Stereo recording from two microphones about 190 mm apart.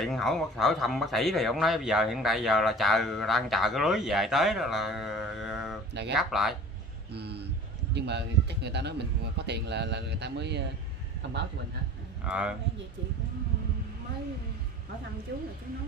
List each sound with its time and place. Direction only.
0.0 s speech: centre (ahead or behind)
7.1 s speech: 60° right (ahead or behind)
12.3 s speech: 5° right (ahead or behind)